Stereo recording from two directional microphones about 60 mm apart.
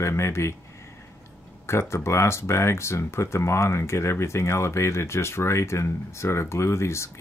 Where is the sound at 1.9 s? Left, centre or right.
Left.